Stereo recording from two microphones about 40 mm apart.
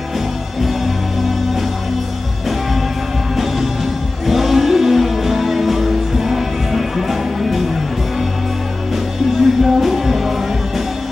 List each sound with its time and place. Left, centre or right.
4.3 s music: centre
9.4 s music: centre